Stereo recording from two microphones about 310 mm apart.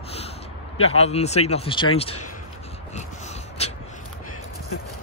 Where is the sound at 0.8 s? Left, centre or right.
Centre.